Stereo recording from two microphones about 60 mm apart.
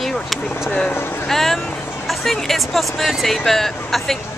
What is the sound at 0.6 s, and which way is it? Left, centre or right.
Speech, centre.